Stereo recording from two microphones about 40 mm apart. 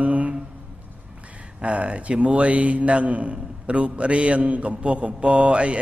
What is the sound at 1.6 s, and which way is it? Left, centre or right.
A man's voice, right.